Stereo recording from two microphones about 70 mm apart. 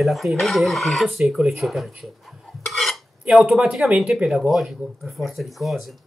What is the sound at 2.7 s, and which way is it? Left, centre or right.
Stir, centre.